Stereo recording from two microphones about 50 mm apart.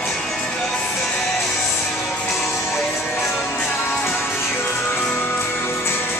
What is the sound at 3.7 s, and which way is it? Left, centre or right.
Music, left.